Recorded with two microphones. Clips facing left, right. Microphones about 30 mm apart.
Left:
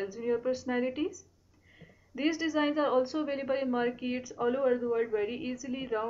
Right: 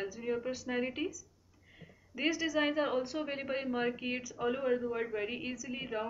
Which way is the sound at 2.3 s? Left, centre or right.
Left.